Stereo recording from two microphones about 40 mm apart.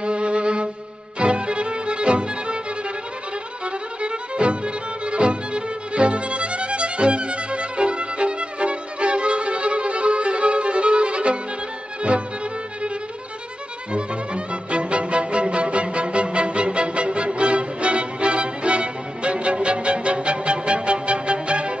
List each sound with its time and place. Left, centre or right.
0.0 s violin: right
1.2 s music: right
3.6 s music: right
13.9 s music: right